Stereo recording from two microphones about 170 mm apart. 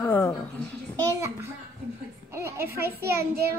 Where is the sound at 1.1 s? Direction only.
15° right (ahead or behind).